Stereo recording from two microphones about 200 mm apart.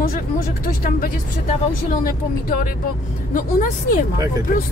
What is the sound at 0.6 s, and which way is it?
A woman's voice, 45° left (ahead or behind).